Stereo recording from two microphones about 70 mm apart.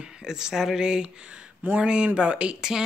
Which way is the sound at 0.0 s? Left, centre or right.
Centre.